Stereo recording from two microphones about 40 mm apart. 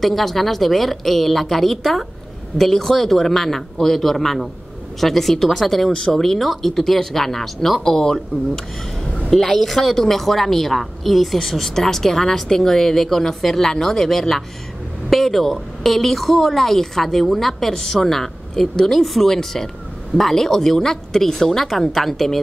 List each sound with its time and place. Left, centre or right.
0.0 s a woman's voice: centre
7.8 s a woman's voice: centre
9.3 s a woman's voice: centre